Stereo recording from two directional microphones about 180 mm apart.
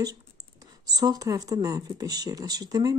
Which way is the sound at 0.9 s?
20° right (ahead or behind).